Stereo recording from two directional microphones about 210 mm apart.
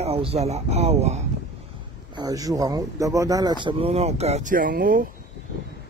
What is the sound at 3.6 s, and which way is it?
Speech, 25° right (ahead or behind).